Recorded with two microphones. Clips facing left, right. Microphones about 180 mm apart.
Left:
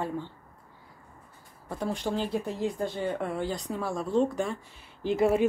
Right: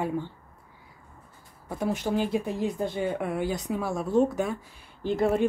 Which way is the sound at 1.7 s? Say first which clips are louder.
Right 3 dB; 5° right (ahead or behind).